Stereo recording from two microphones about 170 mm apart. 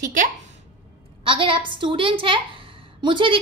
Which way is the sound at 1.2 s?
30° right (ahead or behind).